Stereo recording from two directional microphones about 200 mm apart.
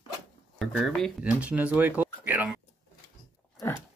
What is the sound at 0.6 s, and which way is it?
Speech, 5° left (ahead or behind).